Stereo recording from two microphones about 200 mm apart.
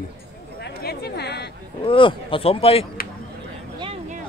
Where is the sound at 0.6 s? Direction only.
55° left (ahead or behind).